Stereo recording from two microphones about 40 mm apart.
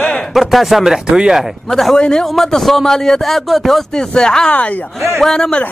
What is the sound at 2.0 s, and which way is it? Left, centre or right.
Speech, left.